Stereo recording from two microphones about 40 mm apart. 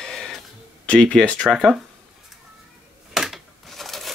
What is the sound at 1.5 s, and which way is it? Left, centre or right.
Speech, centre.